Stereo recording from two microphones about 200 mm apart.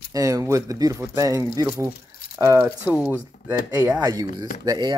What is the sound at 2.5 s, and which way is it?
Speech, 5° right (ahead or behind).